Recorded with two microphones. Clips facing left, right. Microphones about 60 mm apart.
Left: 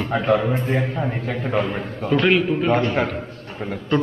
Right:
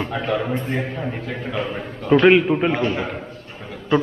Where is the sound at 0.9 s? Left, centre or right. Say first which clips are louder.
Left 2 dB; left.